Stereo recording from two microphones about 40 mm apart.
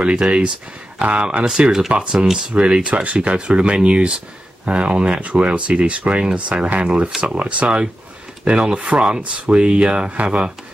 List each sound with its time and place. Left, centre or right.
0.0 s speech: right
1.9 s speech: right
2.1 s speech: centre
2.5 s speech: right
3.2 s speech: right